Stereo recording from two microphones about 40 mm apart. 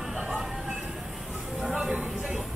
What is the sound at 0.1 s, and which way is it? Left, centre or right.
Train, right.